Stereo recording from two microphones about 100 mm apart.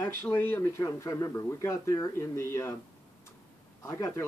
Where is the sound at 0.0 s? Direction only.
25° left (ahead or behind).